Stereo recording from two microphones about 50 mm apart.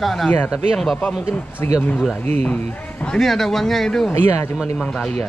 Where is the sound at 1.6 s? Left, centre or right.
Left.